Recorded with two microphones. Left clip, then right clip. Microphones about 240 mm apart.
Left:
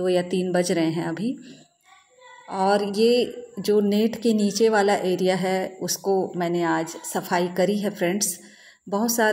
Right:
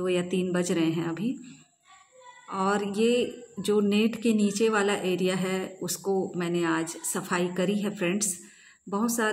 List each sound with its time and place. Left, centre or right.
0.0 s a woman's voice: centre
2.5 s a woman's voice: centre
6.3 s a woman's voice: right
7.2 s a woman's voice: centre